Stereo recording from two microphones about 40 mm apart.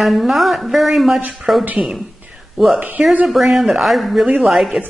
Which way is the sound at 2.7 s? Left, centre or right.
Right.